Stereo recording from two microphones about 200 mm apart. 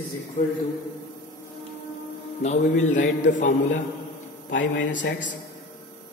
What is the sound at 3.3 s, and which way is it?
Speech, 40° left (ahead or behind).